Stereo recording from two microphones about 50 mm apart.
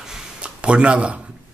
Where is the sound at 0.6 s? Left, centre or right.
Right.